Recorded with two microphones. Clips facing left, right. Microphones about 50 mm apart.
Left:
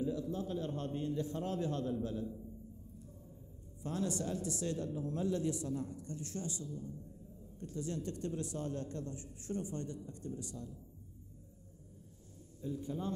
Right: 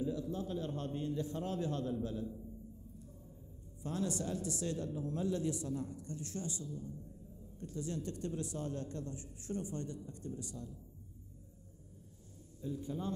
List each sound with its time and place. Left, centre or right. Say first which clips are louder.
0.0 s a man's voice: left 1 dB; left
3.8 s a man's voice: even; left
12.6 s a man's voice: left 1 dB; left